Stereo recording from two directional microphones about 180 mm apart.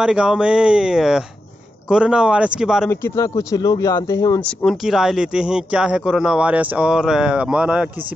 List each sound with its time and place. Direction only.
0.0 s speech: 5° right (ahead or behind)
2.9 s speech: 15° left (ahead or behind)
4.4 s speech: 10° left (ahead or behind)